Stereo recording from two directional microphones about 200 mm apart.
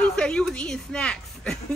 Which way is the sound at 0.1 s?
5° left (ahead or behind).